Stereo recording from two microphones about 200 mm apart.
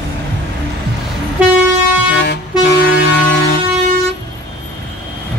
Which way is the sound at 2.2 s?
60° left (ahead or behind).